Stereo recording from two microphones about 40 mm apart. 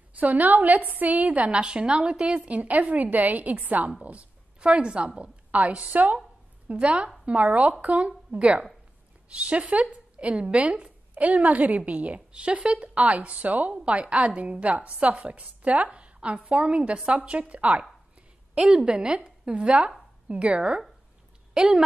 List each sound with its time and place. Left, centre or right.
0.2 s a woman's voice: right
2.3 s a woman's voice: right
5.8 s a woman's voice: right
6.7 s a woman's voice: right
18.6 s a woman's voice: right